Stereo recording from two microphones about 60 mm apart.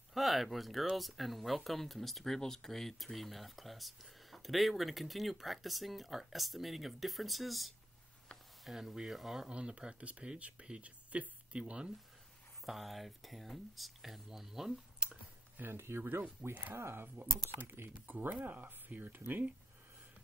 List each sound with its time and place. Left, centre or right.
0.1 s speech: centre
8.3 s a sound: centre
8.6 s speech: centre
12.6 s speech: centre
15.0 s computer keyboard: right
15.7 s speech: right